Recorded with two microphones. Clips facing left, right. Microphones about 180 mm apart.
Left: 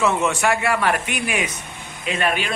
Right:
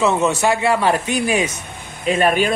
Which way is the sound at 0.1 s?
35° right (ahead or behind).